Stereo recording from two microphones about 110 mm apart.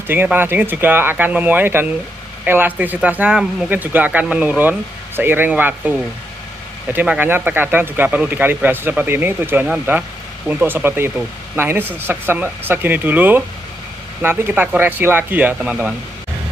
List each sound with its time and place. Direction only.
0.0 s speech: 20° right (ahead or behind)